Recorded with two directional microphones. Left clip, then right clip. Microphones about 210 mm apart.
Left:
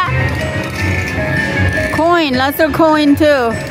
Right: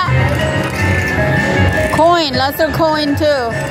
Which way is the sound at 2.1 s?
55° left (ahead or behind).